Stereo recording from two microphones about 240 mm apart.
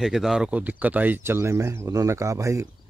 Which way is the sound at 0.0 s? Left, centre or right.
Centre.